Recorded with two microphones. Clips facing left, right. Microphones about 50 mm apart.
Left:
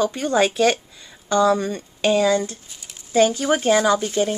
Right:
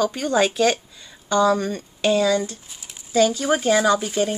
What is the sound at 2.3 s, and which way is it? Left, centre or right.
Speech, left.